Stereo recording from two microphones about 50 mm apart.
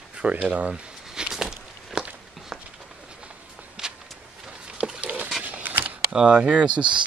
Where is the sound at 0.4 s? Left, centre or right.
Right.